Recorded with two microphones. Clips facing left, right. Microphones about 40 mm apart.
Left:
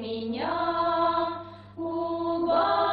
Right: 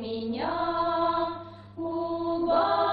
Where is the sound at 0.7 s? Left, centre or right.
Centre.